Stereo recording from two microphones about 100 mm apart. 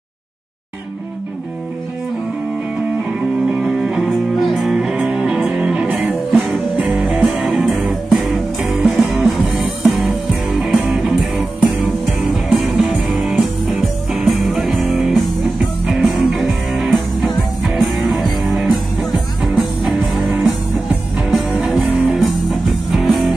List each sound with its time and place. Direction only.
3.5 s music: 5° right (ahead or behind)